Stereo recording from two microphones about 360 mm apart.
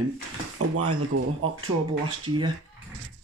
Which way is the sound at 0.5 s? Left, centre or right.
Right.